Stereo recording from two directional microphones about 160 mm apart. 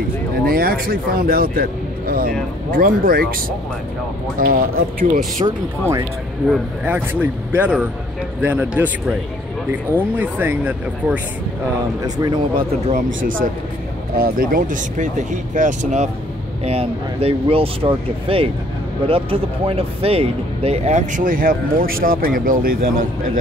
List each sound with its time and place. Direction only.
0.5 s speech: 70° right (ahead or behind)
4.4 s speech: 60° right (ahead or behind)
5.4 s speech: 30° right (ahead or behind)
6.5 s speech: 10° right (ahead or behind)
10.1 s speech: 10° right (ahead or behind)
12.0 s speech: 25° right (ahead or behind)
12.8 s speech: 55° right (ahead or behind)
14.1 s speech: 65° right (ahead or behind); by 16.1 s 50° right (ahead or behind)
16.6 s speech: 40° right (ahead or behind); by 23.0 s 65° right (ahead or behind)